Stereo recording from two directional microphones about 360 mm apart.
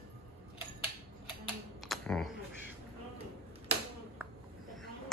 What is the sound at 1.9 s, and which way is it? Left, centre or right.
Typing, centre.